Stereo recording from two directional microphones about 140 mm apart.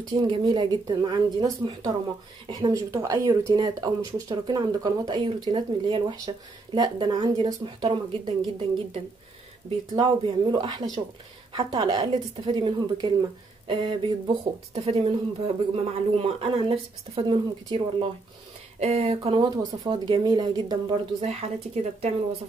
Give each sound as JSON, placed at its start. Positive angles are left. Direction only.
{"t": 0.1, "sound": "a woman's voice", "side_deg": -35}
{"t": 18.8, "sound": "speech", "side_deg": -45}
{"t": 19.3, "sound": "a woman's voice", "side_deg": -30}